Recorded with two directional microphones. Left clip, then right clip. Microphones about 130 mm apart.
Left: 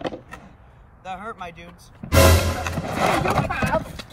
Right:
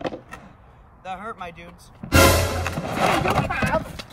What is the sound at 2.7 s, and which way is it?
Horse, 5° right (ahead or behind).